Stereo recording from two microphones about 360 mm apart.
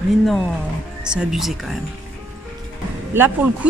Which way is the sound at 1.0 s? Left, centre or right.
Centre.